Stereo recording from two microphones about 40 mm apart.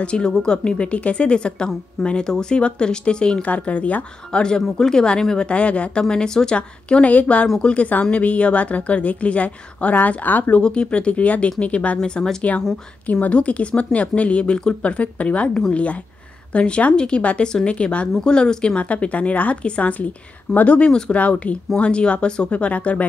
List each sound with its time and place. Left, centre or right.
0.0 s a woman's voice: left
3.4 s speech: left
4.3 s a woman's voice: left
5.5 s a woman's voice: left
7.1 s speech: left
10.6 s a woman's voice: left
12.0 s a woman's voice: centre
13.0 s a woman's voice: left
18.8 s speech: left